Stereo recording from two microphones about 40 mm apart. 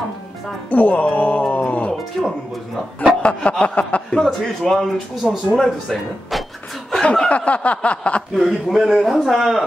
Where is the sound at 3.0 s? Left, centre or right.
Left.